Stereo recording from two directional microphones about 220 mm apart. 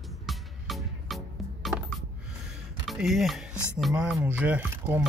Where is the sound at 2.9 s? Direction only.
Centre (ahead or behind).